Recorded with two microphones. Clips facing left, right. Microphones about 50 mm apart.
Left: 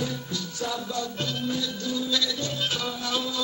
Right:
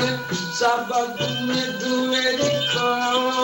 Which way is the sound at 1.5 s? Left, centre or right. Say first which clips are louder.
Right 7 dB; right.